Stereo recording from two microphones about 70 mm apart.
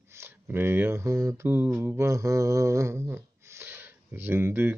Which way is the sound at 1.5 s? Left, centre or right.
Right.